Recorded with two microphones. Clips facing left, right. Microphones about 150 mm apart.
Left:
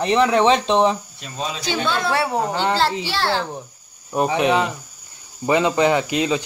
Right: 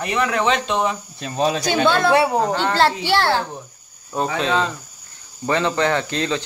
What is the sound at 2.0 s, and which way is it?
Speech, 15° right (ahead or behind).